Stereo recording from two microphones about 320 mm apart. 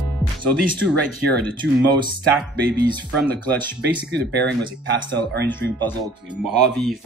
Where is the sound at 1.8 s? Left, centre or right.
Centre.